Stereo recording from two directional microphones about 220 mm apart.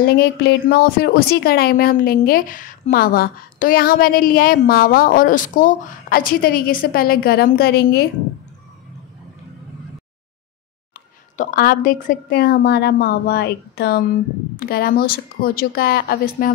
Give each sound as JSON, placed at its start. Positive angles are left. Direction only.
{"t": 0.0, "sound": "speech", "side_deg": 50}
{"t": 11.3, "sound": "speech", "side_deg": 40}